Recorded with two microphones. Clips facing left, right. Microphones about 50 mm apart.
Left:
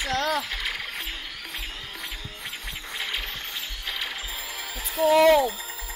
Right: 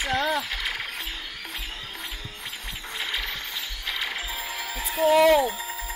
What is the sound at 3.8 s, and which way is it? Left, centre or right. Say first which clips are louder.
Music: right 3 dB; right.